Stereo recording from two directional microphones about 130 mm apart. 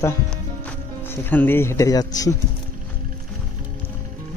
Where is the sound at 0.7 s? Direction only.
15° left (ahead or behind).